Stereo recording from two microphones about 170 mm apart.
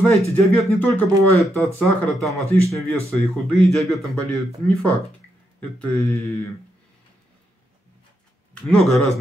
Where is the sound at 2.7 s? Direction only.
15° left (ahead or behind).